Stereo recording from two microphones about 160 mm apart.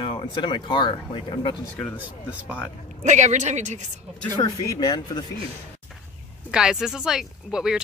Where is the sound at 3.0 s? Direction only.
45° right (ahead or behind).